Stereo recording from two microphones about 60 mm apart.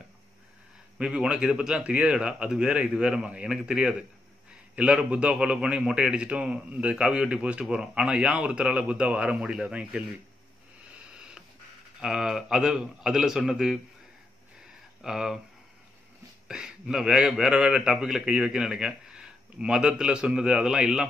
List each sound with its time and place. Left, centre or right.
0.9 s a man's voice: centre
11.1 s a sound: centre
12.0 s a man's voice: centre
15.0 s speech: centre
16.4 s a man's voice: centre